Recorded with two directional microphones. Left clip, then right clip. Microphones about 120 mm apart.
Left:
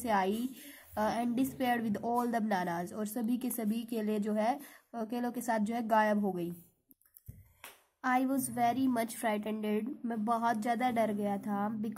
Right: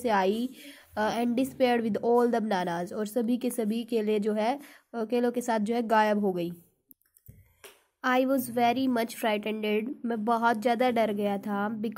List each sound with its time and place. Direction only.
0.0 s a woman's voice: 25° right (ahead or behind)
8.0 s a woman's voice: 30° right (ahead or behind)